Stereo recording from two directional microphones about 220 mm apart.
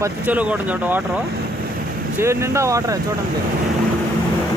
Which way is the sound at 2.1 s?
10° right (ahead or behind).